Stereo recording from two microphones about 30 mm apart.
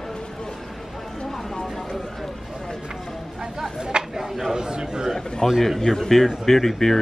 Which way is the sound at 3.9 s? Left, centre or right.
Right.